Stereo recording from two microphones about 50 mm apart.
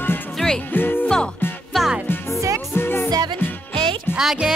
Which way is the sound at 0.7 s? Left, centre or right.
Left.